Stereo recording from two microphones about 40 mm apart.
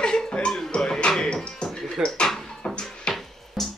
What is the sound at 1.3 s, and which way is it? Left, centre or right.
Music, left.